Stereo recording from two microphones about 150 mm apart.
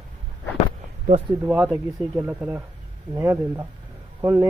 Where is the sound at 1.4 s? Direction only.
10° right (ahead or behind).